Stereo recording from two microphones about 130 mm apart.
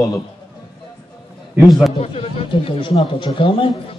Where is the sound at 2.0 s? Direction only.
50° left (ahead or behind).